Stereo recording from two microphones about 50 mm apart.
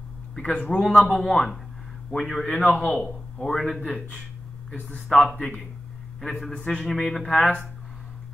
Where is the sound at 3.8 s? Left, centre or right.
Left.